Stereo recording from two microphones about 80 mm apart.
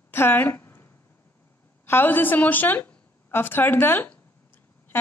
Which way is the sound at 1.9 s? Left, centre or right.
Left.